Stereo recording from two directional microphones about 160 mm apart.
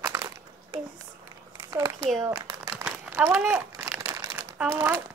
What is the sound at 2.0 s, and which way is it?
Speech, centre (ahead or behind).